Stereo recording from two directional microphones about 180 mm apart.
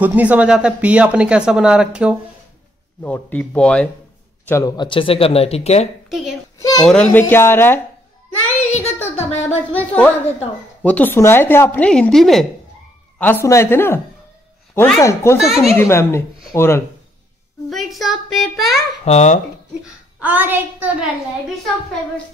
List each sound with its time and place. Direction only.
0.0 s speech: 10° right (ahead or behind)
3.0 s a woman's voice: 10° left (ahead or behind)
4.5 s speech: 20° left (ahead or behind); by 5.9 s 35° left (ahead or behind)
6.0 s a child's voice: 5° right (ahead or behind)
6.6 s a sound: 20° left (ahead or behind)
6.9 s a woman's voice: 10° left (ahead or behind)
8.5 s child singing: 40° left (ahead or behind)
9.8 s a woman's voice: 10° left (ahead or behind)
13.2 s a woman's voice: 10° left (ahead or behind)
15.4 s speech: centre (ahead or behind)
15.7 s a woman's voice: 15° left (ahead or behind)
17.6 s speech: centre (ahead or behind)
19.0 s speech: 40° left (ahead or behind)
19.8 s a child's voice: 5° right (ahead or behind)